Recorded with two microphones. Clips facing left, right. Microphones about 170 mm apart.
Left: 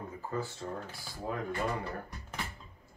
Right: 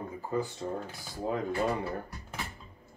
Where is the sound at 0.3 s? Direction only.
15° right (ahead or behind).